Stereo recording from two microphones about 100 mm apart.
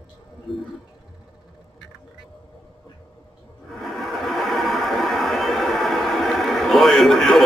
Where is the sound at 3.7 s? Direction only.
Centre (ahead or behind).